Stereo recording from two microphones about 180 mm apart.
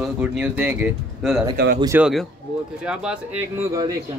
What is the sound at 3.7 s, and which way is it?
Speech, 20° right (ahead or behind).